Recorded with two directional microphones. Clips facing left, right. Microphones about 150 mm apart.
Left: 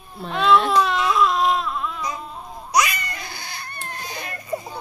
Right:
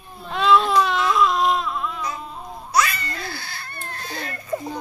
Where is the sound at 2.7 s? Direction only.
15° left (ahead or behind).